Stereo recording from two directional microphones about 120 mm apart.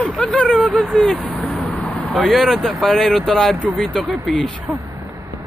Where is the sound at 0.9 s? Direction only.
5° left (ahead or behind).